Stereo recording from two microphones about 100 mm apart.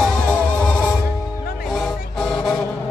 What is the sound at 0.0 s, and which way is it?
Music, 10° left (ahead or behind).